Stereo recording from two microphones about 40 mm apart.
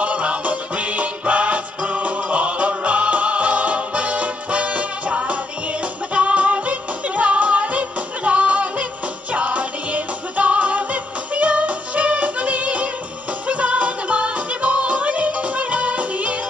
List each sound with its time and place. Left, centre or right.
0.0 s music: right